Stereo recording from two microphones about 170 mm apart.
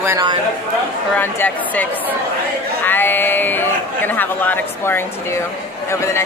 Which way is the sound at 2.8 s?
10° left (ahead or behind).